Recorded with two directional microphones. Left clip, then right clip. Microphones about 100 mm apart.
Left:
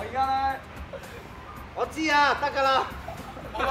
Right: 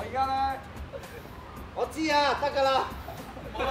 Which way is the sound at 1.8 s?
35° left (ahead or behind).